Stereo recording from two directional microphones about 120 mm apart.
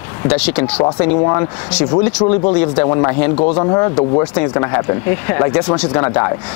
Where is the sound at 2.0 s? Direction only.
20° left (ahead or behind).